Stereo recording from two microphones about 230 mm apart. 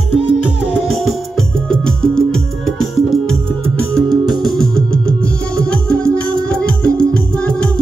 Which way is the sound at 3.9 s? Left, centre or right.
Centre.